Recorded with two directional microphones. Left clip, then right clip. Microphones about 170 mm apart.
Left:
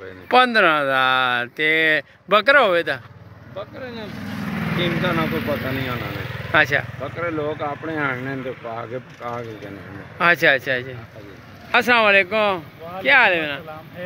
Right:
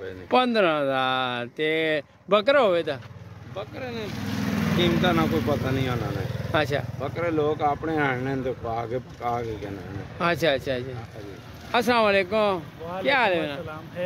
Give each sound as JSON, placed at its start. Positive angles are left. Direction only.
{"t": 0.3, "sound": "speech", "side_deg": -5}
{"t": 3.5, "sound": "speech", "side_deg": -30}
{"t": 6.5, "sound": "speech", "side_deg": -10}
{"t": 7.0, "sound": "speech", "side_deg": -30}
{"t": 10.1, "sound": "speech", "side_deg": -5}